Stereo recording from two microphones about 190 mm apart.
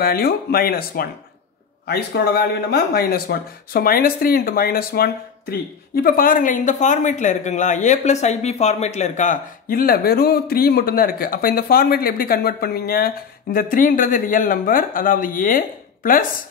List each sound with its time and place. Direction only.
0.0 s speech: 55° left (ahead or behind)